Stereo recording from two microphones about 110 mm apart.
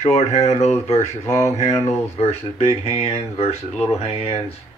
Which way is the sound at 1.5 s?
85° left.